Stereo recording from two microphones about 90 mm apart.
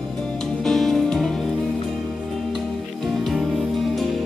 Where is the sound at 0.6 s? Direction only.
5° left (ahead or behind).